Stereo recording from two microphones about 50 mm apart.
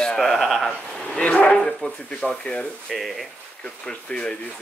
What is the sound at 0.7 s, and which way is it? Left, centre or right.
Speech, centre.